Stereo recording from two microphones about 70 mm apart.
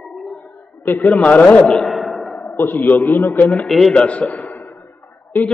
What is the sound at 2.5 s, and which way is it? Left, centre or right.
A man's voice, left.